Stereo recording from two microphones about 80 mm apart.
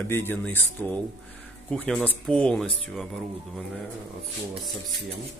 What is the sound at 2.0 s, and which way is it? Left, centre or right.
Speech, centre.